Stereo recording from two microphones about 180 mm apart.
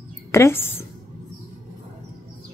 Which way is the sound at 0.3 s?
15° left (ahead or behind).